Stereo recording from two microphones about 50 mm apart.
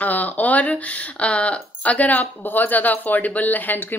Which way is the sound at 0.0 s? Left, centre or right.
Left.